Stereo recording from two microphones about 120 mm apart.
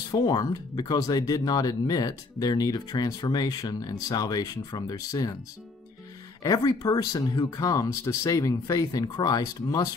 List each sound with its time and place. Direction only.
0.1 s speech: 35° left (ahead or behind)
6.4 s speech: 30° left (ahead or behind)